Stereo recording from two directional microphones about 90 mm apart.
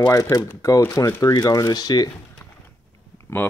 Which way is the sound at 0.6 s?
30° left (ahead or behind).